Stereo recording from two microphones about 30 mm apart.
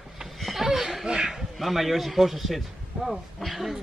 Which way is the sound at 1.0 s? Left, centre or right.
Right.